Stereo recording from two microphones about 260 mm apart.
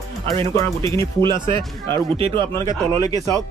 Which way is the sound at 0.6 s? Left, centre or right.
Centre.